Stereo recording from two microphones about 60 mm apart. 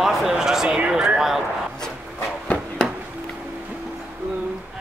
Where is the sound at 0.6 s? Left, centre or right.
Right.